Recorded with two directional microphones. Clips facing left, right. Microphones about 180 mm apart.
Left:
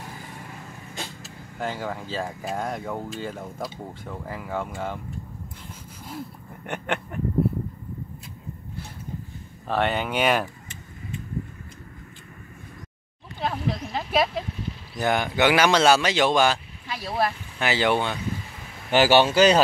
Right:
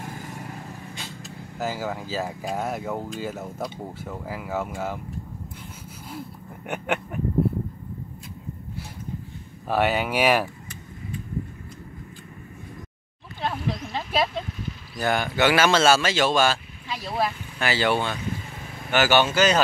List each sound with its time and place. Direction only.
1.2 s speech: 5° right (ahead or behind)
6.0 s a sound: 5° right (ahead or behind)
9.7 s speech: 5° right (ahead or behind)
13.4 s a sound: 5° left (ahead or behind)
15.0 s a man's voice: 15° left (ahead or behind)
16.9 s speech: centre (ahead or behind)
17.6 s a man's voice: 20° left (ahead or behind)
18.9 s speech: 30° left (ahead or behind)